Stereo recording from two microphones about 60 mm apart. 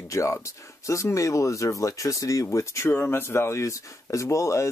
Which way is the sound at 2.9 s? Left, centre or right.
Left.